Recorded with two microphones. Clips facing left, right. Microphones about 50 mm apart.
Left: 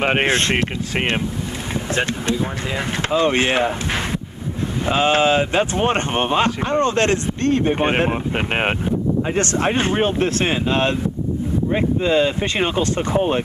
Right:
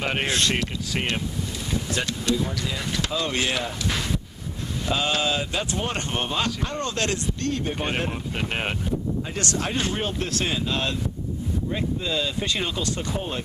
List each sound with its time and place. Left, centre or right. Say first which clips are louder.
0.0 s speech: left 7 dB; left
3.1 s speech: left 10 dB; left
4.8 s speech: left 8 dB; left